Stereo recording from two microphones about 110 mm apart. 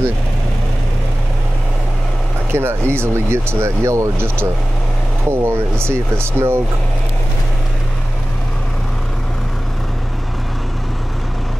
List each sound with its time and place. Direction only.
2.5 s speech: 20° right (ahead or behind)